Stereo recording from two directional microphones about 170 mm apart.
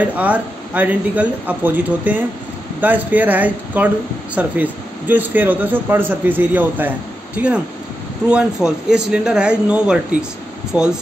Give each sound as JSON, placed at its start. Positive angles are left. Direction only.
{"t": 0.0, "sound": "a man's voice", "side_deg": -10}